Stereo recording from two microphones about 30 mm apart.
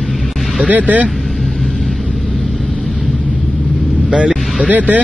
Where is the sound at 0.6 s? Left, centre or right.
Right.